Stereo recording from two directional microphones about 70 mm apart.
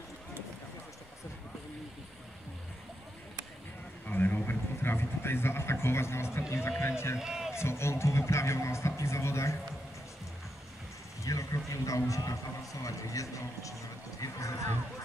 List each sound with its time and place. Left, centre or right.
4.1 s a sound: left
6.8 s speech: left
7.2 s speech: centre
7.5 s speech: left
11.2 s speech: left